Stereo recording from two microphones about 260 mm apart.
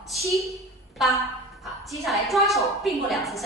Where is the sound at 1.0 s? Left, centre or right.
Centre.